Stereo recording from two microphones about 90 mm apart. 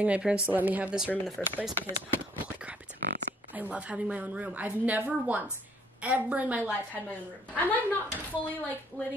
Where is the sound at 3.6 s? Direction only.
15° right (ahead or behind).